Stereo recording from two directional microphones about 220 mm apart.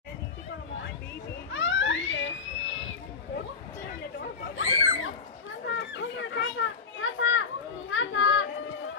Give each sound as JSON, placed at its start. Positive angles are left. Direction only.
{"t": 1.5, "sound": "children playing", "side_deg": 55}
{"t": 4.6, "sound": "a sound", "side_deg": 65}
{"t": 5.7, "sound": "children playing", "side_deg": 55}